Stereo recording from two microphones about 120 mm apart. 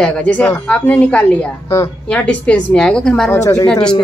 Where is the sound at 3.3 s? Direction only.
25° left (ahead or behind).